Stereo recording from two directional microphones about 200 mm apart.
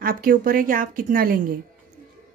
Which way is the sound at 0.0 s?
45° right (ahead or behind).